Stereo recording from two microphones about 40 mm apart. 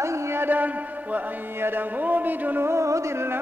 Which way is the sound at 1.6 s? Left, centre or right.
Right.